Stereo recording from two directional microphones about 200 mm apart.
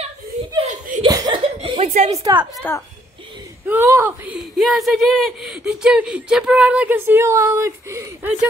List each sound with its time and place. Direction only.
1.0 s chuckle: 20° right (ahead or behind)
2.1 s a woman's voice: 20° right (ahead or behind)
2.5 s a woman's voice: 10° left (ahead or behind)
3.6 s speech: 10° right (ahead or behind)